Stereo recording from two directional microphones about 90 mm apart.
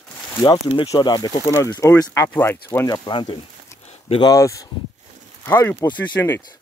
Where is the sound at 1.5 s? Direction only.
35° left (ahead or behind).